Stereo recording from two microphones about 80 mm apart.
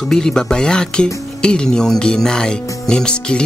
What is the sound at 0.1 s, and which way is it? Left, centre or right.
Speech, centre.